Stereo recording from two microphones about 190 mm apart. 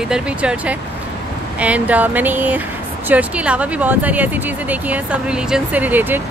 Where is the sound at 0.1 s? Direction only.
5° right (ahead or behind).